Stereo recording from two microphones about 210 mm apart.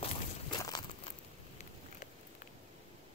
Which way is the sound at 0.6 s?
20° left (ahead or behind).